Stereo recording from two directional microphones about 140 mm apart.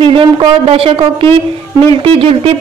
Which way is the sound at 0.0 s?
40° right (ahead or behind).